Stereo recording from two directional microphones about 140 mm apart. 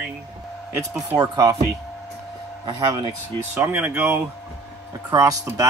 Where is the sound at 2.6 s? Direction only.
30° right (ahead or behind).